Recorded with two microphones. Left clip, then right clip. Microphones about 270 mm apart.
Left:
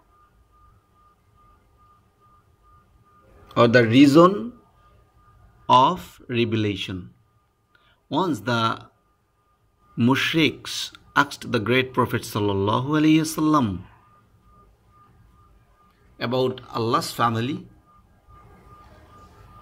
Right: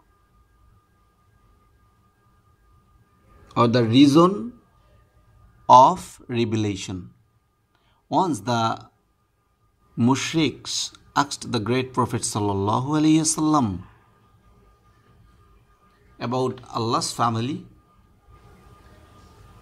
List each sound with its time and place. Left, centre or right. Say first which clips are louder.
3.8 s speech: left 2 dB; centre
5.7 s speech: right 4 dB; centre
8.1 s speech: right 2 dB; centre
9.9 s speech: left 2 dB; centre
16.2 s speech: left 2 dB; centre